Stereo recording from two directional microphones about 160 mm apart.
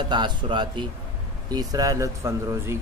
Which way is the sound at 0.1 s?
30° right (ahead or behind).